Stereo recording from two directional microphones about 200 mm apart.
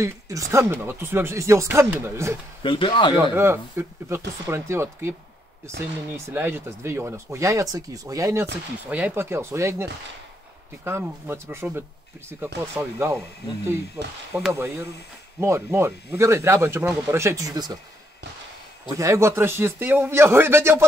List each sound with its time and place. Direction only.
0.0 s speech: 15° right (ahead or behind)
2.6 s speech: 25° left (ahead or behind)
3.2 s speech: 10° right (ahead or behind)
6.1 s speech: 15° right (ahead or behind)
14.3 s speech: 5° right (ahead or behind)
18.9 s speech: 15° right (ahead or behind)